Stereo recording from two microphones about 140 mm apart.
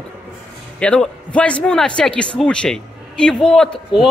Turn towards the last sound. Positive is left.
turn(degrees=0)  # may be behind; listen again after turning